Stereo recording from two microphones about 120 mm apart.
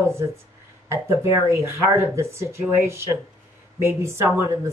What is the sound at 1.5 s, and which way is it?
Speech, 25° right (ahead or behind).